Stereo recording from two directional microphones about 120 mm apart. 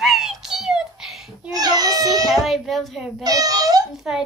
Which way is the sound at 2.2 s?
Centre (ahead or behind).